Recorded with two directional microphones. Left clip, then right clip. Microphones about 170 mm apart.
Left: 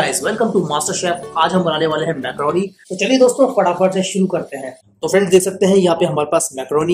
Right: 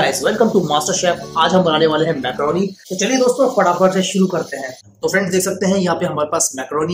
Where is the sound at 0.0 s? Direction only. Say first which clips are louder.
Right 2 dB; centre (ahead or behind).